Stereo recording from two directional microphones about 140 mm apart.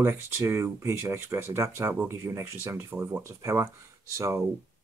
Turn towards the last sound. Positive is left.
turn(degrees=-20)  # may be behind; listen again after turning